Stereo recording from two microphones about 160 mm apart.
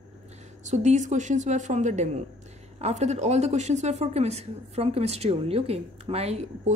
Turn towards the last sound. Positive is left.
turn(degrees=-40)  # may be behind; listen again after turning